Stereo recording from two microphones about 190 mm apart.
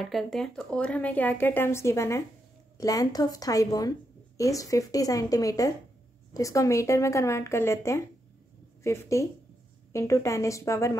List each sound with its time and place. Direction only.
0.0 s a woman's voice: centre (ahead or behind)